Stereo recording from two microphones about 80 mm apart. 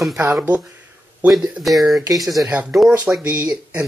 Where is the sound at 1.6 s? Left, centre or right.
Centre.